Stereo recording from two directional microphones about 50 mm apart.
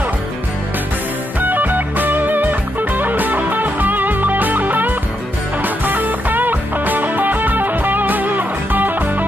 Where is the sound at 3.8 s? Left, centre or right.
Right.